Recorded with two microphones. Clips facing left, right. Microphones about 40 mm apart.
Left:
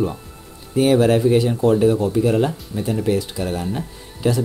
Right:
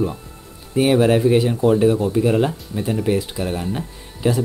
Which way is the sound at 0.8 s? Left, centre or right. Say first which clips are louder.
Even; centre.